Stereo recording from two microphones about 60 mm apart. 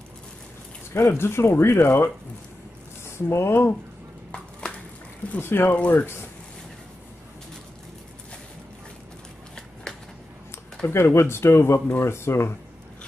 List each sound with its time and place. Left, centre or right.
0.9 s speech: left
3.1 s speech: left
4.3 s a sound: centre
5.4 s speech: left
5.7 s speech: left
10.9 s speech: left